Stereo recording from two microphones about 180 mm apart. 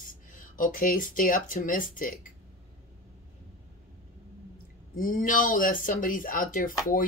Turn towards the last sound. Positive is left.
turn(degrees=50)  # may be behind; listen again after turning